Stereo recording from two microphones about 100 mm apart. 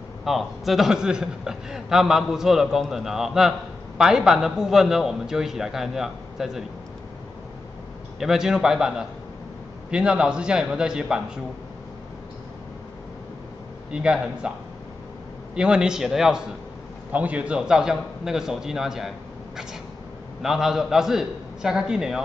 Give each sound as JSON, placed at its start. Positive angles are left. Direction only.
{"t": 0.2, "sound": "a man's voice", "side_deg": 0}
{"t": 8.2, "sound": "a man's voice", "side_deg": -5}
{"t": 13.9, "sound": "a man's voice", "side_deg": -10}
{"t": 15.5, "sound": "a man's voice", "side_deg": -10}